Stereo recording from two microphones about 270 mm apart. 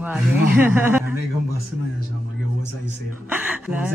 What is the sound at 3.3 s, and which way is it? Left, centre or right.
Speech, centre.